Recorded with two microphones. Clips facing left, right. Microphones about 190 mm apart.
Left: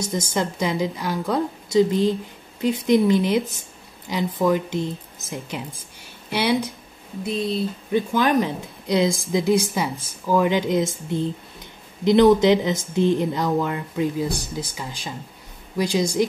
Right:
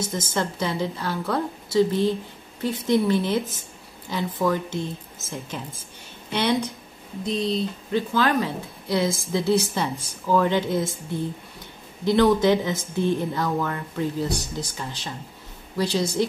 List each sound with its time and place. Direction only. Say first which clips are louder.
0.0 s speech: left 2 dB; 15° left (ahead or behind)
8.1 s speech: left 2 dB; 15° left (ahead or behind)